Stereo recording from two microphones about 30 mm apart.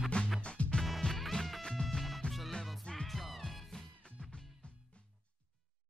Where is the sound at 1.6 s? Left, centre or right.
Left.